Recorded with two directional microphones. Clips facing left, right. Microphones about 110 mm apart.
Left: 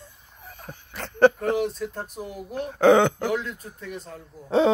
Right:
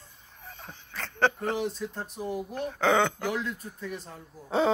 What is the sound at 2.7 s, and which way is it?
Speech, 15° left (ahead or behind).